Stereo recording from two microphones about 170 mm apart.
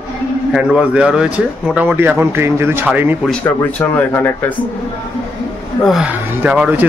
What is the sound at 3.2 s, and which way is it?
Speech, 5° left (ahead or behind).